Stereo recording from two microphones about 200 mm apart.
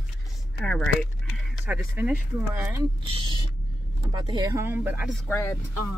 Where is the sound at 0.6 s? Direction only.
5° left (ahead or behind).